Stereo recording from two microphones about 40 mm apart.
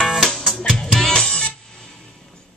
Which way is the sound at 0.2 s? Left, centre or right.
Centre.